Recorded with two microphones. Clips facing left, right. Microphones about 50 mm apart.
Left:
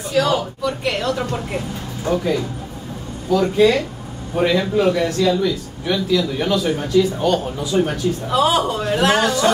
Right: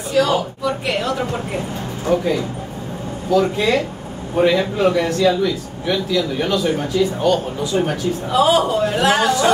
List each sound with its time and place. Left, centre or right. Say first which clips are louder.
0.1 s a man's voice: right 1 dB; centre
3.3 s a man's voice: left 2 dB; centre